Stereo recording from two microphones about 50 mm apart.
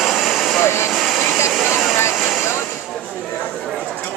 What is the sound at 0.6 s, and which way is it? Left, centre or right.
Speech, left.